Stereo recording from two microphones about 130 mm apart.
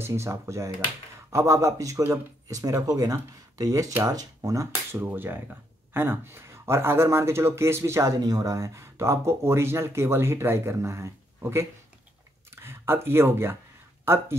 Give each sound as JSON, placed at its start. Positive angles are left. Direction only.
{"t": 0.0, "sound": "speech", "side_deg": -20}